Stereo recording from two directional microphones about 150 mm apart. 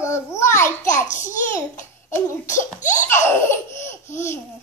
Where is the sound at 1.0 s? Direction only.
55° left (ahead or behind).